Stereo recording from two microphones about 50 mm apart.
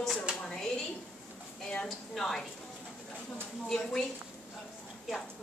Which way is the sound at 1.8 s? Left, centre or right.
Centre.